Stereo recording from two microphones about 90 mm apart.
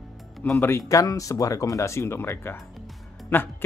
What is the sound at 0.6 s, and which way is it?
Speech, 30° left (ahead or behind).